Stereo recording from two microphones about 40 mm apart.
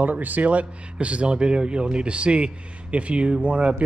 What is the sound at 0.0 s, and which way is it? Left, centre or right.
Speech, right.